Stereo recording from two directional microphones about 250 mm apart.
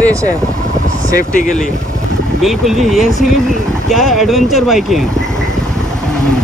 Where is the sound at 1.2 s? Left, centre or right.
Left.